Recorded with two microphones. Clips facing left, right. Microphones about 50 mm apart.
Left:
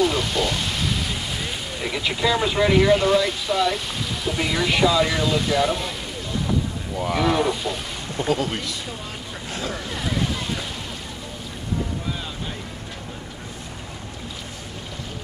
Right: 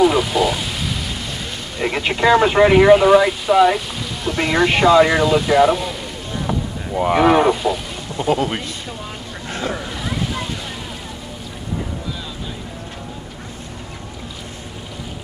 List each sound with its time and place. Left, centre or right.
0.0 s rain: centre
1.8 s speech: right
3.3 s speech: centre
3.7 s a sound: centre
4.4 s speech: right
5.7 s speech: centre
7.0 s speech: right
7.5 s a sound: centre
8.2 s speech: right
9.5 s boat: right
9.8 s boat: centre